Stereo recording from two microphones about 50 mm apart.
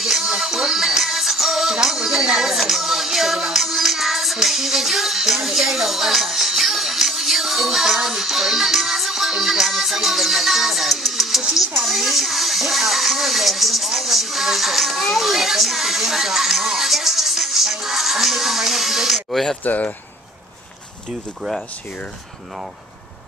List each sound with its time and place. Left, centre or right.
0.0 s music: centre
11.5 s a sound: centre
19.6 s speech: left